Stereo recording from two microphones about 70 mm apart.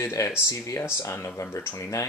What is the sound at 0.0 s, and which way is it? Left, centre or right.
Speech, left.